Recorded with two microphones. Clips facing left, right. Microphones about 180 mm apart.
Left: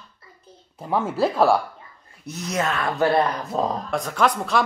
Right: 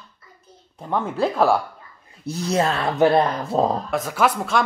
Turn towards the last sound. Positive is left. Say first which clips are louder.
# right 1 dB
turn(degrees=-5)  # may be behind; listen again after turning